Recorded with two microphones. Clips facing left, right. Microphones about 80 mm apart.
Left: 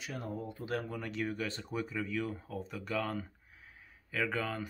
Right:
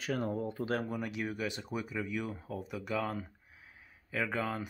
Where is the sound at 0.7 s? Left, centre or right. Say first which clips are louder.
Right 3 dB; right.